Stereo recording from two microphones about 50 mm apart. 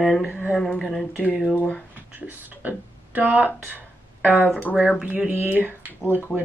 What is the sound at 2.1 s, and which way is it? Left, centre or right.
Speech, right.